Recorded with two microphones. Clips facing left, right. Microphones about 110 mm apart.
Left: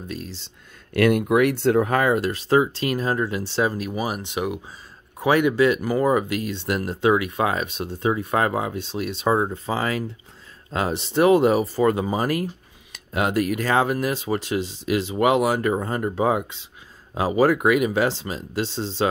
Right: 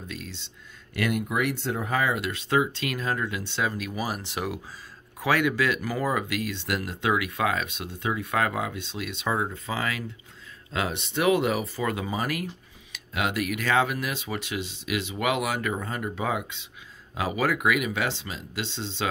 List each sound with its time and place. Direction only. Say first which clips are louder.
0.1 s speech: left 7 dB; 35° left (ahead or behind)
0.9 s speech: left 9 dB; 60° left (ahead or behind); by 19.0 s 40° left (ahead or behind)